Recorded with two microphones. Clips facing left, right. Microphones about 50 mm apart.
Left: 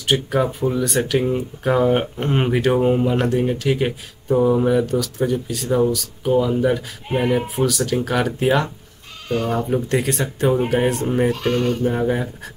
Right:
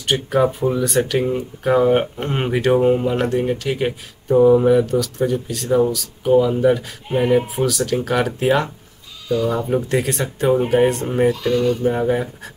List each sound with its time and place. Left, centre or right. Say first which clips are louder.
0.0 s speech: right 2 dB; centre
9.3 s speech: right 2 dB; left
9.7 s speech: right 1 dB; centre
11.3 s speech: right 2 dB; left
11.8 s speech: right 2 dB; centre